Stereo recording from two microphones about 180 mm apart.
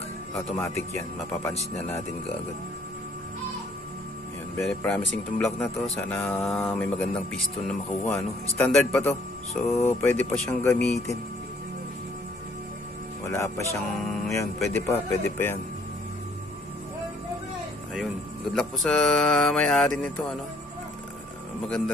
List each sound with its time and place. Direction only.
0.5 s speech: 10° left (ahead or behind)
4.6 s speech: 5° left (ahead or behind)
13.2 s speech: 15° left (ahead or behind)
13.9 s speech: centre (ahead or behind)
14.7 s speech: 15° left (ahead or behind)
17.9 s speech: centre (ahead or behind)
21.6 s speech: 5° left (ahead or behind)